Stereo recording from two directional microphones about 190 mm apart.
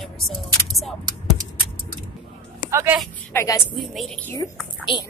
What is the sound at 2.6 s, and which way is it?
Speech, 10° right (ahead or behind).